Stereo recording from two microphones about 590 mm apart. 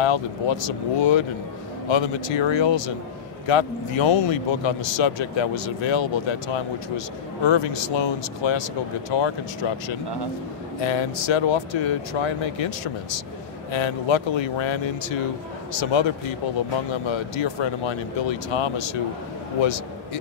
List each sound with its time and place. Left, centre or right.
0.0 s a man's voice: left